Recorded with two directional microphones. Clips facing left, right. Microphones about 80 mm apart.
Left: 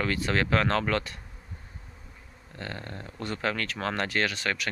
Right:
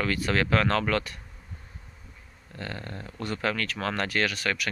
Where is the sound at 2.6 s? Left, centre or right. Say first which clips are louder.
Right 1 dB; left.